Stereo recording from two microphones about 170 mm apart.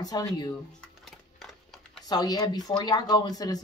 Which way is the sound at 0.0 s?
20° left (ahead or behind).